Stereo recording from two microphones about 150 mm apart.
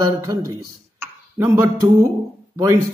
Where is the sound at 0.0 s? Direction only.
25° right (ahead or behind).